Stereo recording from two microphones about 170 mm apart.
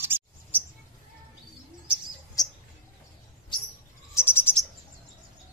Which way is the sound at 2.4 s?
20° left (ahead or behind).